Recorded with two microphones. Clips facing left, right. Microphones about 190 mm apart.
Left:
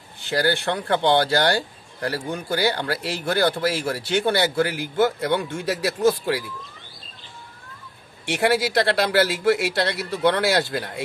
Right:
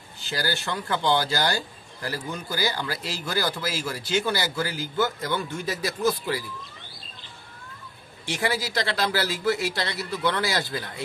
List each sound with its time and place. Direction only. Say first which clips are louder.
0.3 s speech: left 7 dB; 60° left (ahead or behind)
8.3 s speech: left 7 dB; 65° left (ahead or behind)